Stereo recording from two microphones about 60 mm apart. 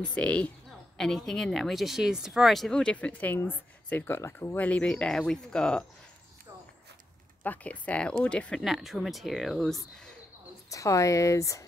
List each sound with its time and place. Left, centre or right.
0.1 s speech: left
0.9 s speech: centre
2.5 s speech: centre
2.8 s a woman's voice: left
4.6 s speech: centre
7.4 s speech: left
8.6 s speech: centre
10.7 s speech: left